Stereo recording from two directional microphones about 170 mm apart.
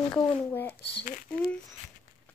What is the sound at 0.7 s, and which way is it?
Speech, 80° left.